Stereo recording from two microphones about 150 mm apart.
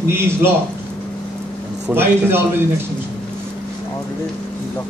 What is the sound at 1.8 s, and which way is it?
Speech, 15° right (ahead or behind).